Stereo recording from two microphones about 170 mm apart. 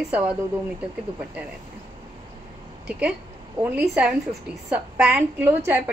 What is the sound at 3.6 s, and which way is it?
A woman's voice, 10° right (ahead or behind).